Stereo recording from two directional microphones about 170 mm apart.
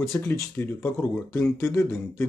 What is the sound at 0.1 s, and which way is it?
Speech, 15° left (ahead or behind).